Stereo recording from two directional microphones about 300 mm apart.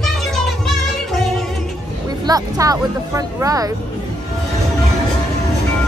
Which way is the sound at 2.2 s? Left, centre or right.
Centre.